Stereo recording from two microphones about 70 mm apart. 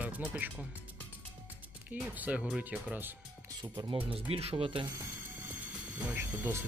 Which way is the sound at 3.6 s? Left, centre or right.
Right.